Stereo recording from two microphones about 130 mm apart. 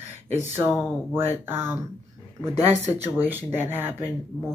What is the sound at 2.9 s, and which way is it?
Speech, 15° right (ahead or behind).